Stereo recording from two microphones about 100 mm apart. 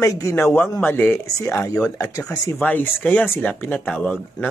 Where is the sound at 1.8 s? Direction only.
35° left (ahead or behind).